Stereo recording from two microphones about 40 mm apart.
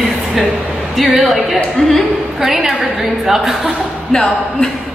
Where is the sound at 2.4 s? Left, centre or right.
Centre.